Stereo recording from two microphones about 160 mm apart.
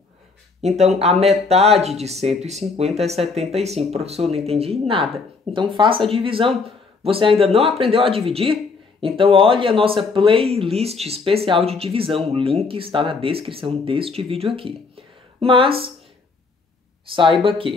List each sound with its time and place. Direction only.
0.6 s speech: 45° right (ahead or behind)
17.1 s speech: 35° right (ahead or behind)